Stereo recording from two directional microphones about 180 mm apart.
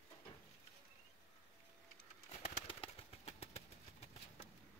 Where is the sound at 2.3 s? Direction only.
35° left (ahead or behind).